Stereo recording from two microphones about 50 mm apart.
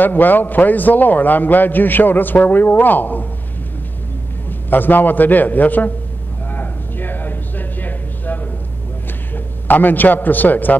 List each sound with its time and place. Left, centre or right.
0.0 s a man's voice: left
4.5 s a man's voice: left
6.5 s a sound: left
9.3 s a man's voice: left